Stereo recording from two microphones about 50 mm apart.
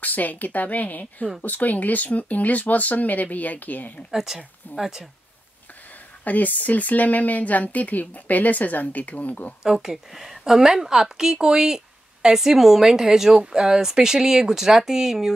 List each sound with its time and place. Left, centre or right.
0.0 s speech: left
4.1 s a woman's voice: centre
6.2 s speech: left
9.6 s a woman's voice: centre